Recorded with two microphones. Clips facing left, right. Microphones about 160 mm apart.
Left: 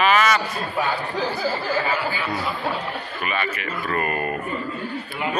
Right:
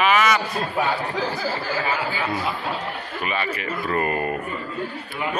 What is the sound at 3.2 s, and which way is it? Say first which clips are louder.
Speech: right 1 dB; 30° right (ahead or behind).